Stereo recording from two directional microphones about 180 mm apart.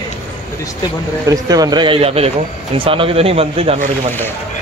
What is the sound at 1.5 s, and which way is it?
A man's voice, 20° right (ahead or behind).